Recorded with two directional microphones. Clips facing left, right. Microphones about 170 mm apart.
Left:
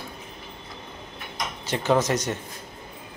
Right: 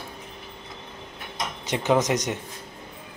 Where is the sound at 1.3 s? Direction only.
20° right (ahead or behind).